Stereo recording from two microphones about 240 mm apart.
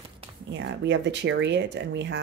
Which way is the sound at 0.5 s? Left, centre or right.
Right.